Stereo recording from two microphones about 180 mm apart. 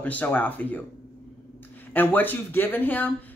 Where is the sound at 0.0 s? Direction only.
10° left (ahead or behind).